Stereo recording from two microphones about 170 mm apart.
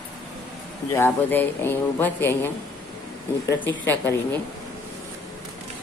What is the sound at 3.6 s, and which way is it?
Speech, 10° left (ahead or behind).